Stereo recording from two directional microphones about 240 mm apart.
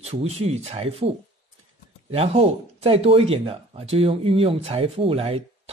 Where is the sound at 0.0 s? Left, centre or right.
Right.